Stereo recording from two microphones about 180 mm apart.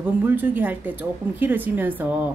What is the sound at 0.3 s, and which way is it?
A woman's voice, 10° right (ahead or behind).